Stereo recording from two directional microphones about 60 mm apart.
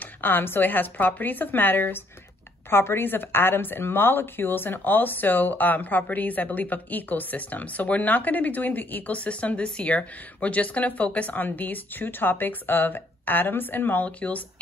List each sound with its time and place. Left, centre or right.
0.0 s a woman's voice: left